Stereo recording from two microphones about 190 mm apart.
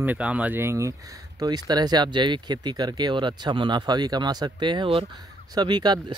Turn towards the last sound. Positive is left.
turn(degrees=-20)  # may be behind; listen again after turning